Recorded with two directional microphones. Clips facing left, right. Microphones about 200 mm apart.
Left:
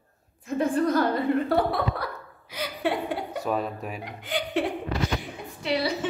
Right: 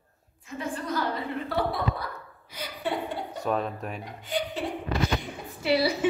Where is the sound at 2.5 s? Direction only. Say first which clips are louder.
Left 7 dB; 80° left.